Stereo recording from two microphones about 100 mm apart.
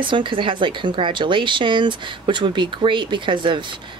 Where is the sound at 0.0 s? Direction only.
55° right (ahead or behind).